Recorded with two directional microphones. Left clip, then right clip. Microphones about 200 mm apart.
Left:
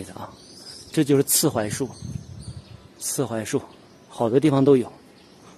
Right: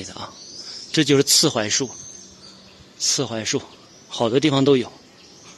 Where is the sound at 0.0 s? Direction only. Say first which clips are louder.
Right 3 dB; 5° left (ahead or behind).